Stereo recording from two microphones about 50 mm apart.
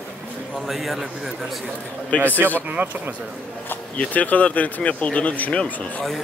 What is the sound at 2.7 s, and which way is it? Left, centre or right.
Speech, right.